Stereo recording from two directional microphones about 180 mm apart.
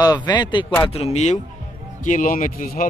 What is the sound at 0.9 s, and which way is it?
Speech, 35° left (ahead or behind).